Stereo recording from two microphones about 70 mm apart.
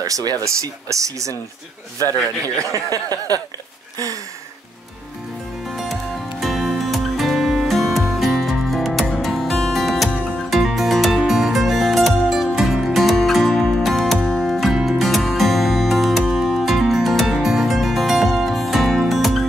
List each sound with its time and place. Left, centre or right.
0.0 s speech: right
2.7 s snicker: right
5.8 s music: centre